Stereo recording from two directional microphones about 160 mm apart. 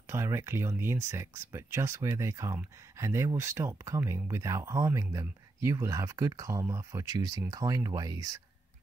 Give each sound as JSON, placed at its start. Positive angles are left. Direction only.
{"t": 0.1, "sound": "speech", "side_deg": -15}